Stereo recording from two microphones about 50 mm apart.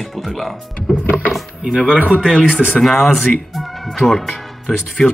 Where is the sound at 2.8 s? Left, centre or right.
Centre.